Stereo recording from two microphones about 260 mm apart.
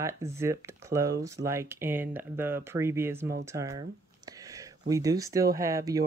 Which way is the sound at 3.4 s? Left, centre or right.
Centre.